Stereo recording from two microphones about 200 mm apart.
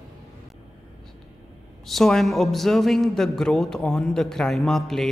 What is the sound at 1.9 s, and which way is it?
A man's voice, centre (ahead or behind).